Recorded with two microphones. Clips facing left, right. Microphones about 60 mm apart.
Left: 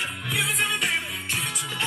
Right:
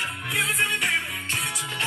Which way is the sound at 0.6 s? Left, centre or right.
Right.